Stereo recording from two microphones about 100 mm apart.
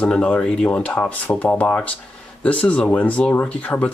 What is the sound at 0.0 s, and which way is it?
Speech, 10° left (ahead or behind).